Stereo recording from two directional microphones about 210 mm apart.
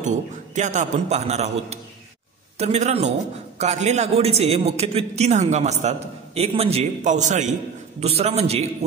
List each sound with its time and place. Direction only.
0.0 s a man's voice: 35° right (ahead or behind)